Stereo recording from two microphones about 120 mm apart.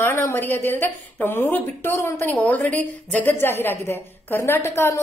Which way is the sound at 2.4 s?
10° left (ahead or behind).